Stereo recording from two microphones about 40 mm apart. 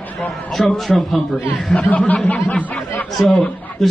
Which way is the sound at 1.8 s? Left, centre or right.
Left.